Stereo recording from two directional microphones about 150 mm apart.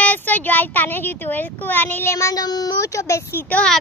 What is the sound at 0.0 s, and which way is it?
Speech, 10° left (ahead or behind).